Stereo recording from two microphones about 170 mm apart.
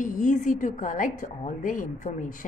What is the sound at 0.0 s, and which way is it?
A woman's voice, 50° left (ahead or behind).